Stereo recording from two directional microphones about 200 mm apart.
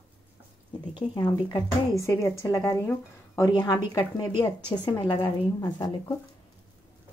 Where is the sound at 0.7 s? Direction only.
20° left (ahead or behind).